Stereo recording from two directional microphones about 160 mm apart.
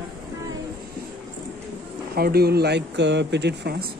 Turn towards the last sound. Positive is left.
turn(degrees=-85)